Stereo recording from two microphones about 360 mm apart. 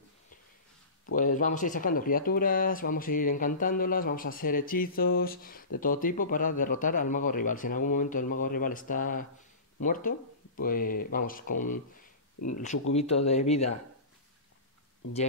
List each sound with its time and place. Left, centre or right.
1.1 s speech: left
12.4 s speech: left
12.9 s speech: centre